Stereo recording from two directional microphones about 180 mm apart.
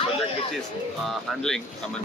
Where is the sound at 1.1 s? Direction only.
Centre (ahead or behind).